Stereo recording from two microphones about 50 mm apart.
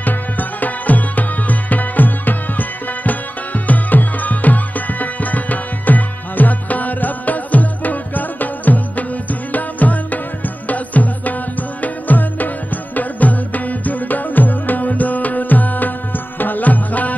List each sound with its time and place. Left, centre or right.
0.0 s music: left